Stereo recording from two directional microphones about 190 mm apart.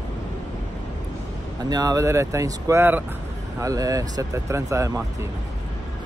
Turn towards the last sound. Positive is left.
turn(degrees=-15)  # may be behind; listen again after turning